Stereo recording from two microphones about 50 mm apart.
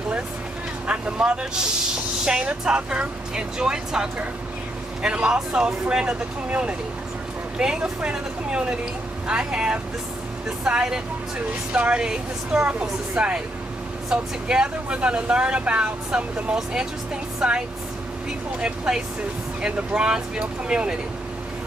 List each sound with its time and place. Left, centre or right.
0.8 s a woman's voice: centre
19.6 s speech: centre